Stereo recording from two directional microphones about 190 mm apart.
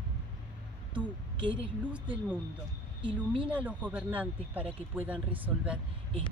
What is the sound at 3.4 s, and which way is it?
Speech, 5° right (ahead or behind).